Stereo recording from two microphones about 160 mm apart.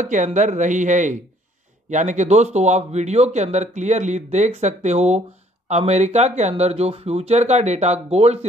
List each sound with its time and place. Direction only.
0.0 s speech: 50° right (ahead or behind)